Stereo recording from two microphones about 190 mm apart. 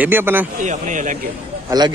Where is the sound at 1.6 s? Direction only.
20° right (ahead or behind).